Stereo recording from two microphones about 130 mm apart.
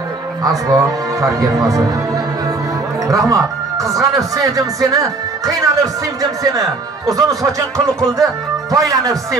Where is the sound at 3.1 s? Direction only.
25° right (ahead or behind).